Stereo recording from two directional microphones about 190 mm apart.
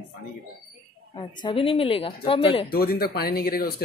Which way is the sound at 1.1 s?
25° left (ahead or behind).